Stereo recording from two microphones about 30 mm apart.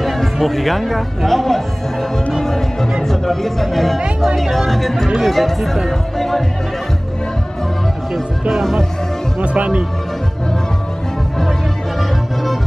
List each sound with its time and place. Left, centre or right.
0.0 s music: centre
2.4 s speech: centre
9.4 s speech: right